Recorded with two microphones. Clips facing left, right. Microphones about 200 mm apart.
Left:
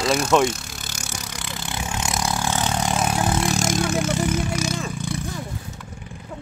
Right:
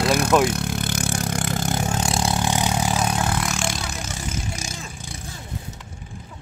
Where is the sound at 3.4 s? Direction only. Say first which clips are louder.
Left 6 dB; 40° left (ahead or behind); by 5.2 s 70° left (ahead or behind).